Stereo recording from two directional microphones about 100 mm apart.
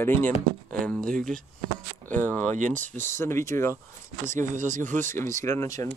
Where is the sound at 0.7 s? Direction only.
5° left (ahead or behind).